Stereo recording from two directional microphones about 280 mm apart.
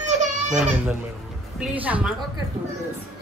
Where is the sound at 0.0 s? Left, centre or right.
Right.